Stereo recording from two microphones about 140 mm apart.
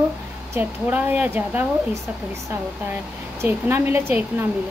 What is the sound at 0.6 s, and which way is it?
A woman's voice, 15° right (ahead or behind).